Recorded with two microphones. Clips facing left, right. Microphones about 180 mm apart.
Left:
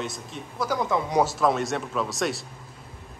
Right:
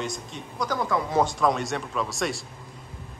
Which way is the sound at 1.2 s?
Centre (ahead or behind).